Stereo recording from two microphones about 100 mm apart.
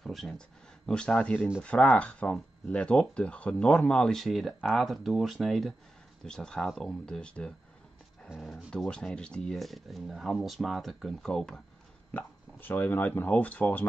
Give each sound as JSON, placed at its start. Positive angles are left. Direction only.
{"t": 0.0, "sound": "a sound", "side_deg": 5}
{"t": 0.8, "sound": "speech", "side_deg": 10}
{"t": 8.3, "sound": "speech", "side_deg": -10}
{"t": 8.6, "sound": "speech", "side_deg": 10}
{"t": 12.1, "sound": "speech", "side_deg": 20}